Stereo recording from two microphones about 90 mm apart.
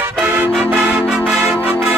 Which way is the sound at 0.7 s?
15° right (ahead or behind).